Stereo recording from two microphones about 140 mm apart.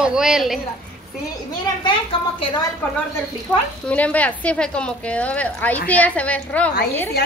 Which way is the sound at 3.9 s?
10° left (ahead or behind).